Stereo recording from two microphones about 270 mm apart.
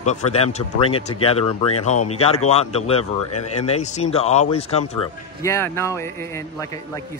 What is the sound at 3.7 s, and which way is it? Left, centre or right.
Speech, left.